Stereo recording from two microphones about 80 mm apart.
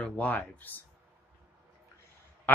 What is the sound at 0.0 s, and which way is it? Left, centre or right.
Speech, centre.